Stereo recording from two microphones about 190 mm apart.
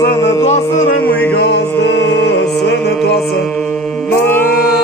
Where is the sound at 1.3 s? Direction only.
60° left (ahead or behind).